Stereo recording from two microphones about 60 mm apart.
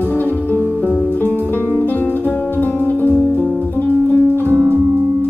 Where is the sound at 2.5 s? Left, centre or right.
Left.